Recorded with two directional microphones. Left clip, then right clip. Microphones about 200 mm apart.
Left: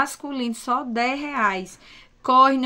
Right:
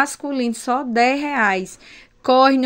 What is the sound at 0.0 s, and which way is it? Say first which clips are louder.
Speech: right 5 dB; 20° right (ahead or behind).